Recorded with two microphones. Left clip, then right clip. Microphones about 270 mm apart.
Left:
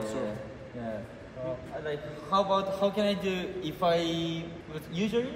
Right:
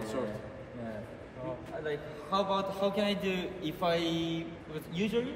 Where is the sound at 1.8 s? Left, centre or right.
Centre.